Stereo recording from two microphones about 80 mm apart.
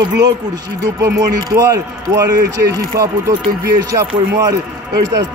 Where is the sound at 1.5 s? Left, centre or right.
Right.